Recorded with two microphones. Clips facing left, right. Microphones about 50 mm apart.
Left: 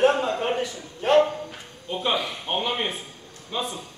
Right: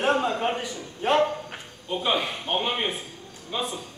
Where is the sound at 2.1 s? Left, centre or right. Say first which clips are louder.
Right 1 dB; right.